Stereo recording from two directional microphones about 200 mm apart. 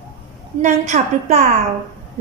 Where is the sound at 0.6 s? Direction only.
35° right (ahead or behind).